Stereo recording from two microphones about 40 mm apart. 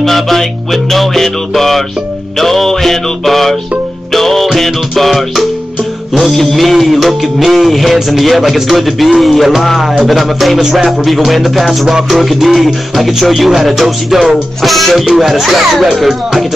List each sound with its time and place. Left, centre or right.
0.0 s music: centre